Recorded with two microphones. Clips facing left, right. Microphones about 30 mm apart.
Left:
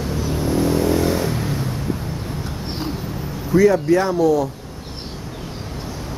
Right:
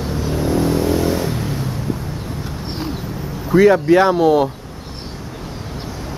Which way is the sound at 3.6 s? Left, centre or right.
Right.